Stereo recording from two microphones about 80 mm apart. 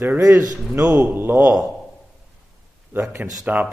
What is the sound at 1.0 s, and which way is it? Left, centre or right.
Speech, right.